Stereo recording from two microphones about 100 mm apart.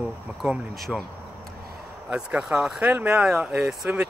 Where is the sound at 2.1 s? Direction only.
10° right (ahead or behind).